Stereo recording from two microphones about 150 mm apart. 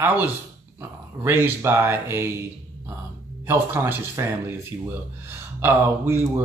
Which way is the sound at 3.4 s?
15° right (ahead or behind).